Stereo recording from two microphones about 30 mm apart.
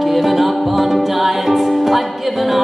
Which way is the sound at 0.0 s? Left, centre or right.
Centre.